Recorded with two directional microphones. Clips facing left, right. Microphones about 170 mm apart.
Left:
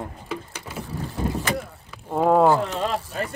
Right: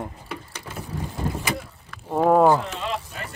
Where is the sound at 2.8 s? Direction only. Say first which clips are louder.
Left 5 dB; 40° left (ahead or behind).